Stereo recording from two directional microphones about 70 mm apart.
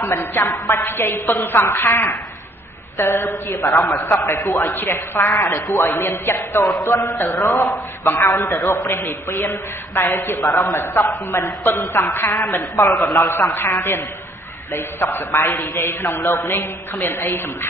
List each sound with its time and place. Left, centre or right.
0.0 s a woman's voice: left
3.9 s a man's voice: left
5.5 s a woman's voice: left
6.7 s speech: left
7.2 s a man's voice: left
7.7 s a woman's voice: left